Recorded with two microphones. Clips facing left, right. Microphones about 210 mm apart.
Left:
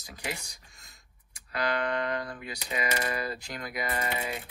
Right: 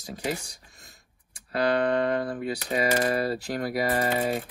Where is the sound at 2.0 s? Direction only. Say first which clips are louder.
Right 7 dB; 50° right (ahead or behind).